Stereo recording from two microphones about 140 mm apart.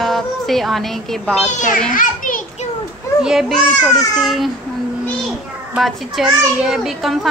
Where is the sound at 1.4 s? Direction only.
60° left (ahead or behind).